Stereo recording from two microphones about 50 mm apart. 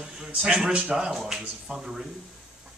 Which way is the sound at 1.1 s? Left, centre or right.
Centre.